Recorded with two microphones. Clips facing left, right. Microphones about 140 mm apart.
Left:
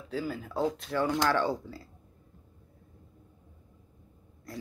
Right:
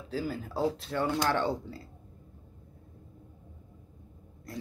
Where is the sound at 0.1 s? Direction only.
35° right (ahead or behind).